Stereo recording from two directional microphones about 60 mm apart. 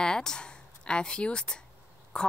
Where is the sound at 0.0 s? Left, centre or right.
Centre.